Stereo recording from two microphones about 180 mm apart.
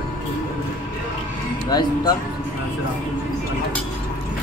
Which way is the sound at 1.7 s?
20° left (ahead or behind).